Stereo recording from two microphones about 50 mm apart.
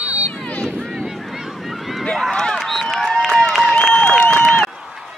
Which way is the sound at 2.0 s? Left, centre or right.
Centre.